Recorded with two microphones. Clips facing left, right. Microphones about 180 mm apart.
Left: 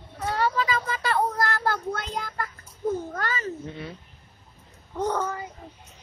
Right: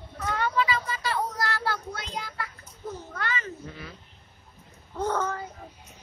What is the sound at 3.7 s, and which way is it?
Speech, 25° left (ahead or behind).